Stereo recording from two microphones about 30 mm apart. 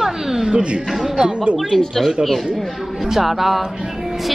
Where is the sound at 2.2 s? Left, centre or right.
Right.